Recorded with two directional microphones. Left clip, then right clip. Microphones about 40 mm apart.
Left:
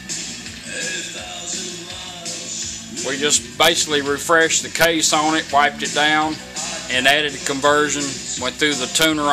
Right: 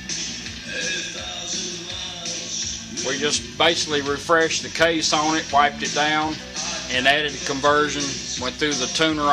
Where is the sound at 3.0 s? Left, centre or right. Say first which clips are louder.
Left 3 dB; left.